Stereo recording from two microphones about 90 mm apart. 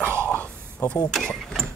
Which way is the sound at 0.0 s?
25° right (ahead or behind).